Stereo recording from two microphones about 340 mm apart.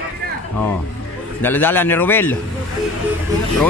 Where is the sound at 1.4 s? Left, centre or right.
Centre.